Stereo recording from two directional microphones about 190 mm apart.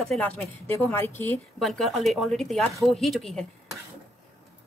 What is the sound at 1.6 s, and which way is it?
Speech, centre (ahead or behind).